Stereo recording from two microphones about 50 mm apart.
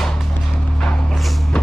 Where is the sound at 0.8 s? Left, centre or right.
Centre.